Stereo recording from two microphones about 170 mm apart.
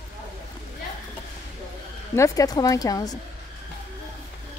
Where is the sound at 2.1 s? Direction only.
20° left (ahead or behind).